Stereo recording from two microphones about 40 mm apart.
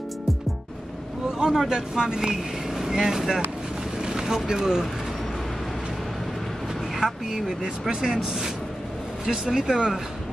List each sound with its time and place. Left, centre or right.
1.5 s speech: centre
4.0 s vehicle: centre
4.5 s speech: centre
7.0 s speech: centre